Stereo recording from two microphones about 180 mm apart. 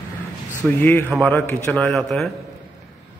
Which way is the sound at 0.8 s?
10° left (ahead or behind).